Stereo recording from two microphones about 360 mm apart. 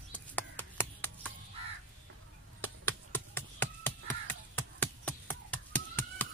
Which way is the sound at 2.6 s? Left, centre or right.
Centre.